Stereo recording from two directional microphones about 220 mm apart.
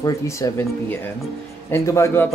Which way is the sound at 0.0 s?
15° left (ahead or behind).